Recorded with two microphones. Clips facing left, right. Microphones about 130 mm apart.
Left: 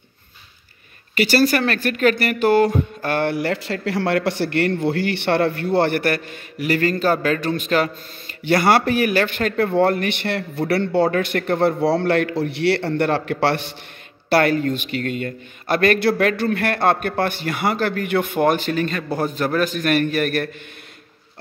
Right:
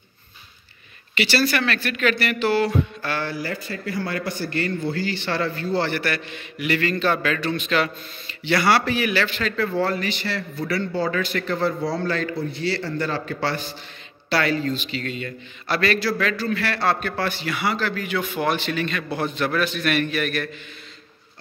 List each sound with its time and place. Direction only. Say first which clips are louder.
1.1 s a man's voice: left 5 dB; 45° left (ahead or behind); by 13.7 s 70° left (ahead or behind)
14.3 s speech: left 5 dB; 55° left (ahead or behind)